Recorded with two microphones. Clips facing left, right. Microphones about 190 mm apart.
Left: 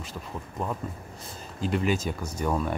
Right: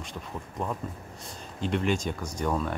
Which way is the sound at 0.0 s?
5° left (ahead or behind).